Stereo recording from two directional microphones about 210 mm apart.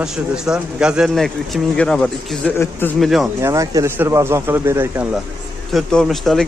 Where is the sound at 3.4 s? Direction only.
15° right (ahead or behind); by 6.5 s centre (ahead or behind).